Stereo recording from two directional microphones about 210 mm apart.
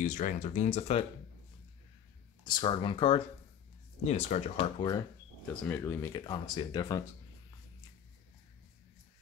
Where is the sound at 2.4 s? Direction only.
20° left (ahead or behind).